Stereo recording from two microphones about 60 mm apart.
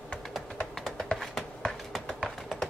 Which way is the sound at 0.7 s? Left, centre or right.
Centre.